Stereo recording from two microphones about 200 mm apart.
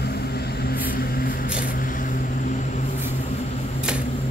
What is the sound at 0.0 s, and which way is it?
Vehicle, 55° left (ahead or behind).